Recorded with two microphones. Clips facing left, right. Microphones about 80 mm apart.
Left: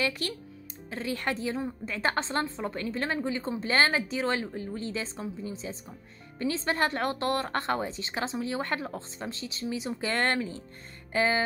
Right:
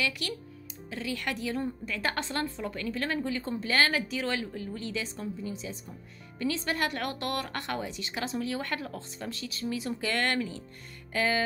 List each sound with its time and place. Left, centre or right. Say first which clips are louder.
0.2 s a woman's voice: left 2 dB; left